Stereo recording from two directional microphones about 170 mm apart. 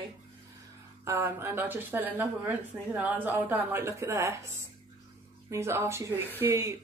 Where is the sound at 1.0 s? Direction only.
15° right (ahead or behind).